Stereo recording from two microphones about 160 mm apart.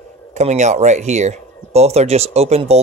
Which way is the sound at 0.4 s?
45° right (ahead or behind).